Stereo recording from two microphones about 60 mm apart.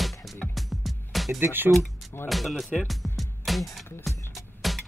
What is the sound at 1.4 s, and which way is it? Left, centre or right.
Speech, right.